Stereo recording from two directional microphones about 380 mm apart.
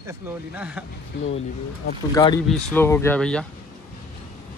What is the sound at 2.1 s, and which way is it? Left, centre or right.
A man's voice, centre.